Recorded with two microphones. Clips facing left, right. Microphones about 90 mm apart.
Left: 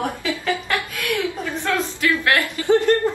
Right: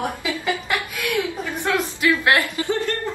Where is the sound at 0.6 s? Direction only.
15° right (ahead or behind).